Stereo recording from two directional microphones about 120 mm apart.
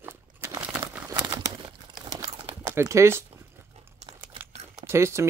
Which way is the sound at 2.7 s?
25° right (ahead or behind).